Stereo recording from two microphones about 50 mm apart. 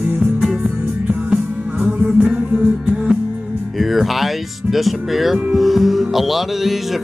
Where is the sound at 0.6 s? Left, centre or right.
Right.